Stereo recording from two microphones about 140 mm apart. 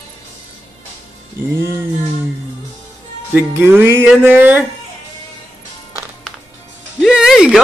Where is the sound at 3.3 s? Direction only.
15° right (ahead or behind).